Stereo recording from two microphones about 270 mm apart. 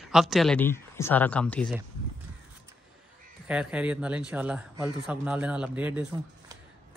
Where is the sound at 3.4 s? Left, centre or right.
Centre.